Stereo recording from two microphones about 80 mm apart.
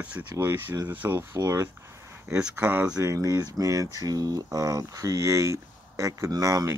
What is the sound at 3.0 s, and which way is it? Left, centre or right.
Speech, right.